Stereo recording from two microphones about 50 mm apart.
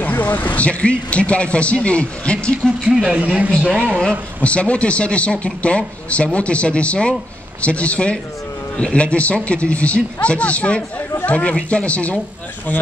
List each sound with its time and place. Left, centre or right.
0.2 s a man's voice: left
2.8 s speech: centre
3.1 s speech: right
4.4 s a man's voice: left